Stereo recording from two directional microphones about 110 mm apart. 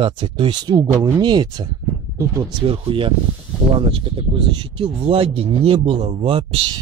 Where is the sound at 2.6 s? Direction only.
55° right (ahead or behind).